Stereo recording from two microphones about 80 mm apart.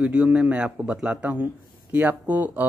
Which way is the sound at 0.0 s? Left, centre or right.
Centre.